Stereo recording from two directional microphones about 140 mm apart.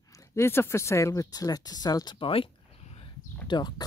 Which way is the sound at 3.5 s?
30° left (ahead or behind).